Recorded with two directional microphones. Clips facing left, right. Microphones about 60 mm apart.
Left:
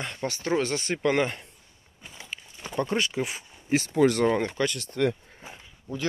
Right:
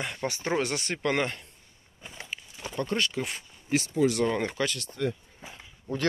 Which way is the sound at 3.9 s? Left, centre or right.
Left.